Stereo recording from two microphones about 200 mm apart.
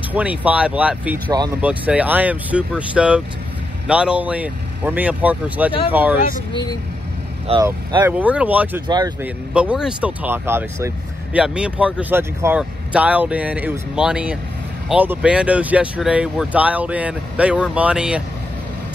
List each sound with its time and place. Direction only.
0.1 s speech: 5° right (ahead or behind)
6.5 s speech: 20° left (ahead or behind)
7.6 s speech: 10° right (ahead or behind)
8.8 s speech: 20° right (ahead or behind)
9.2 s speech: 5° right (ahead or behind)